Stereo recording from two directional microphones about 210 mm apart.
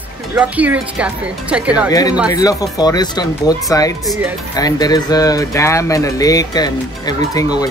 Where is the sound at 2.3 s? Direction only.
15° left (ahead or behind).